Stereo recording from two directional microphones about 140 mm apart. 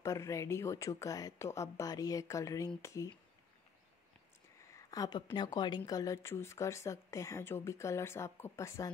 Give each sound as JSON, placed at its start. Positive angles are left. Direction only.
{"t": 0.0, "sound": "speech", "side_deg": 25}
{"t": 4.7, "sound": "a woman's voice", "side_deg": 25}